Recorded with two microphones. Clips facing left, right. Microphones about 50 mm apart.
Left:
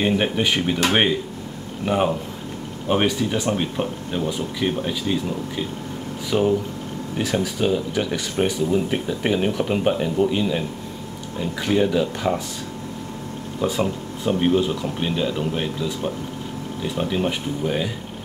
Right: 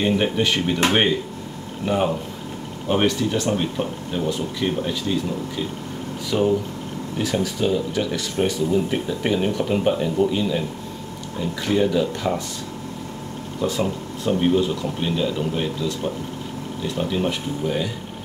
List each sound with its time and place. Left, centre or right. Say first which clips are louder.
0.0 s speech: even; centre
1.9 s speech: left 1 dB; centre
6.3 s speech: even; centre
13.6 s speech: left 1 dB; centre